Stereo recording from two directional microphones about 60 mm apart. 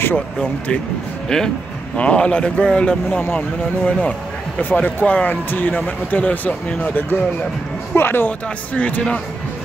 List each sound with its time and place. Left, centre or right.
1.3 s speech: centre
3.1 s speech: left
8.7 s speech: left